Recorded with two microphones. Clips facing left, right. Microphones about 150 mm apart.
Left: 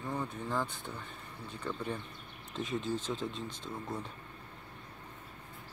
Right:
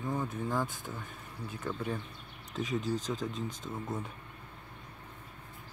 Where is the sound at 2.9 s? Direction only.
40° right (ahead or behind).